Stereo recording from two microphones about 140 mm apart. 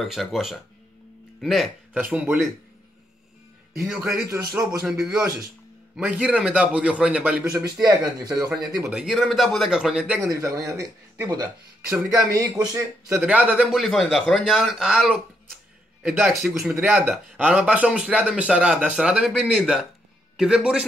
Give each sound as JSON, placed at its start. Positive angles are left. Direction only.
{"t": 0.0, "sound": "a man's voice", "side_deg": 0}
{"t": 2.0, "sound": "speech", "side_deg": -15}
{"t": 3.8, "sound": "a man's voice", "side_deg": -5}
{"t": 7.8, "sound": "speech", "side_deg": -30}
{"t": 8.7, "sound": "a man's voice", "side_deg": -5}
{"t": 10.2, "sound": "speech", "side_deg": -25}
{"t": 13.1, "sound": "a man's voice", "side_deg": -10}